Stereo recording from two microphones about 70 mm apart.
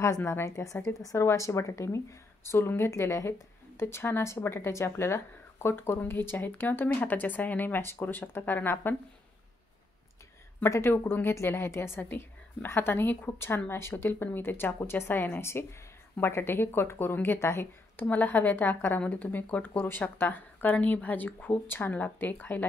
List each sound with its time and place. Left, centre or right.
0.0 s speech: left
10.6 s speech: left